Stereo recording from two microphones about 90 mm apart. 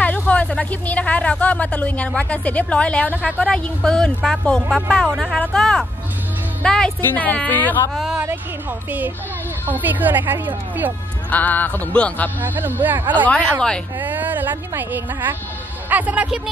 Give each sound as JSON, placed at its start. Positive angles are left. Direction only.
{"t": 0.3, "sound": "speech", "side_deg": 15}
{"t": 4.6, "sound": "a woman's voice", "side_deg": -10}
{"t": 5.5, "sound": "speech", "side_deg": 5}
{"t": 7.9, "sound": "speech", "side_deg": 0}
{"t": 9.7, "sound": "speech", "side_deg": -20}
{"t": 11.2, "sound": "speech", "side_deg": 20}
{"t": 12.4, "sound": "speech", "side_deg": -20}
{"t": 13.3, "sound": "speech", "side_deg": 10}
{"t": 13.9, "sound": "a sound", "side_deg": -20}
{"t": 14.7, "sound": "a woman's voice", "side_deg": -20}